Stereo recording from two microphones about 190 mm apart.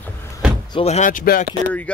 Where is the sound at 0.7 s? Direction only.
30° left (ahead or behind).